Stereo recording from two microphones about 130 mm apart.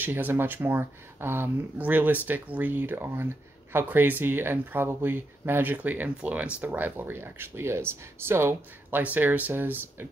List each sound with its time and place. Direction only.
0.0 s speech: 15° right (ahead or behind)